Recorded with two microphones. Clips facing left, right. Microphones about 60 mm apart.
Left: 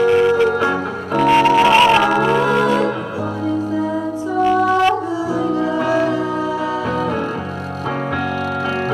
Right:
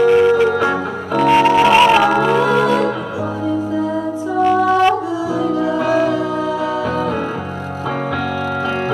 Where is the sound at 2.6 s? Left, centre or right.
Left.